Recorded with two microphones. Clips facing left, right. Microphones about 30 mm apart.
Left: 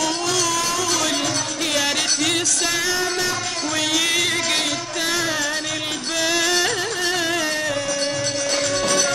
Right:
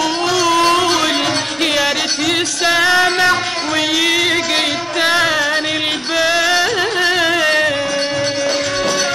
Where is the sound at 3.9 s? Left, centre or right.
Right.